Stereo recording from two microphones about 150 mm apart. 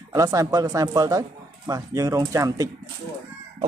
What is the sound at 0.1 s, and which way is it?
Speech, 25° right (ahead or behind).